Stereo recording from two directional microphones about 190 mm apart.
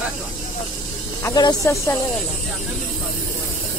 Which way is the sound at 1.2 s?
20° left (ahead or behind).